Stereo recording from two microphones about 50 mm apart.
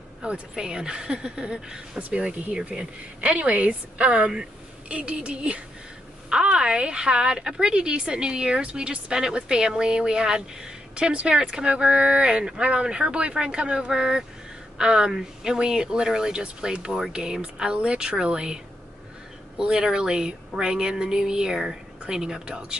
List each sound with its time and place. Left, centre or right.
0.2 s a woman's voice: centre
2.0 s a woman's voice: right